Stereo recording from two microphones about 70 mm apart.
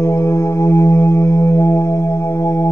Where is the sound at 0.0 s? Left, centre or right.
Left.